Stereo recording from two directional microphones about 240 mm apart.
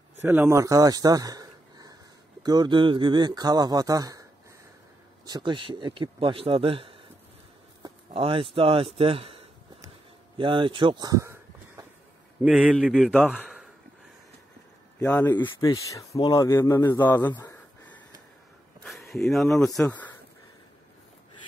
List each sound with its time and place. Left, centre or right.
0.2 s speech: centre
7.8 s a sound: right
10.3 s speech: right
12.4 s a man's voice: centre
15.0 s a man's voice: centre
15.3 s a man's voice: centre
17.4 s a sound: centre
19.7 s speech: centre